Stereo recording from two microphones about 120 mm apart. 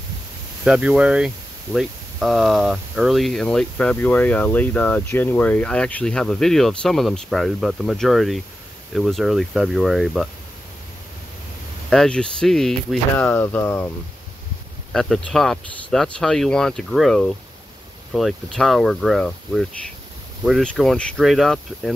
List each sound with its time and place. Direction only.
0.7 s speech: 10° right (ahead or behind)
11.9 s speech: 5° left (ahead or behind)
13.1 s speech: 15° left (ahead or behind)
14.9 s speech: 5° left (ahead or behind)